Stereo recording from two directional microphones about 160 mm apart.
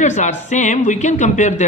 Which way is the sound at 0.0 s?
45° left (ahead or behind).